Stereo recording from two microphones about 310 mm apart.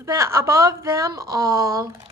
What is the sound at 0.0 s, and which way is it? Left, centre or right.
A woman's voice, centre.